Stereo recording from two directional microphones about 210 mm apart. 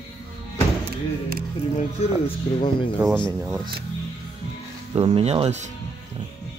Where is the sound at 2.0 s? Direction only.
30° left (ahead or behind).